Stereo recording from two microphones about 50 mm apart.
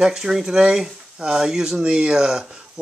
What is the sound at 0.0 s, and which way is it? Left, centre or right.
Speech, centre.